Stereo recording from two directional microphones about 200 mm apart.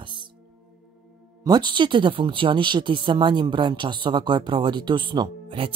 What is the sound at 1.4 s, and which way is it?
Speech, 20° right (ahead or behind).